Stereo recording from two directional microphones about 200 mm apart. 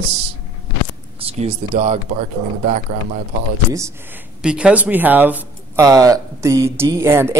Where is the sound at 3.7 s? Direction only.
15° right (ahead or behind).